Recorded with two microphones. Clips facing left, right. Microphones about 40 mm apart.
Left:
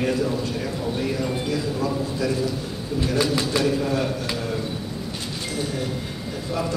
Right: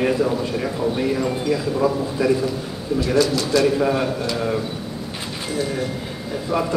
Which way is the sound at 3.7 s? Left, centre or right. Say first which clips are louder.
Right 4 dB; right.